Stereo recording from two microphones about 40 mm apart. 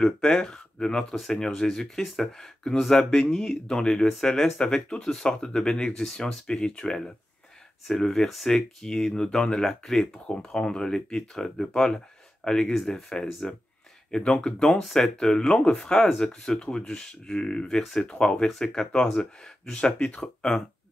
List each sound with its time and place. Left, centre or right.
0.0 s speech: left
1.1 s speech: centre
8.3 s speech: centre
10.2 s speech: left
14.1 s speech: left; by 15.0 s centre
15.1 s speech: centre